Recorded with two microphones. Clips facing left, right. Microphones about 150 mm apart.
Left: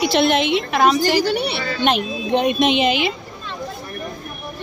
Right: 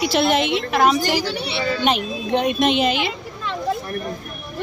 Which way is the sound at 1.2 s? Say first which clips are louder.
Left 5 dB; 50° left (ahead or behind).